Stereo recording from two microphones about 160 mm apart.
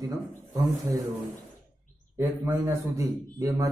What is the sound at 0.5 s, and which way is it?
Speech, 20° right (ahead or behind).